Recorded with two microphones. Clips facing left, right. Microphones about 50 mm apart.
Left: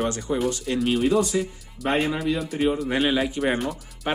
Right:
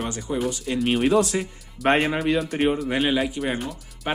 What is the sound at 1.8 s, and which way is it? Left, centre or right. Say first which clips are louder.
Speech: right 4 dB; right.